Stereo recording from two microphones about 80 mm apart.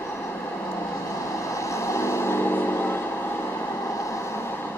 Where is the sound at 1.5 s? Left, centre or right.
Left.